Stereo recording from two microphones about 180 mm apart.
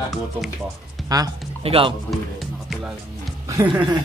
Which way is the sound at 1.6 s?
30° right (ahead or behind).